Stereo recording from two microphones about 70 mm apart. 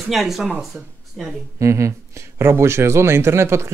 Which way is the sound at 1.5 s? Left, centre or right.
Right.